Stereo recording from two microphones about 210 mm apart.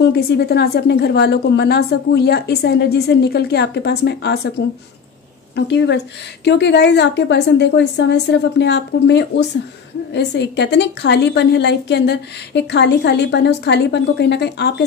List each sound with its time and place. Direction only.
0.1 s a woman's voice: 50° left (ahead or behind)
5.7 s a woman's voice: 55° left (ahead or behind)